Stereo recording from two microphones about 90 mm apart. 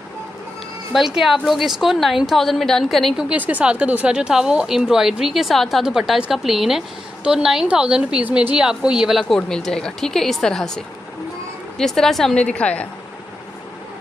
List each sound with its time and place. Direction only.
0.9 s a woman's voice: 5° right (ahead or behind)
3.3 s a woman's voice: 15° right (ahead or behind); by 10.8 s 5° left (ahead or behind)
11.8 s a woman's voice: 5° left (ahead or behind)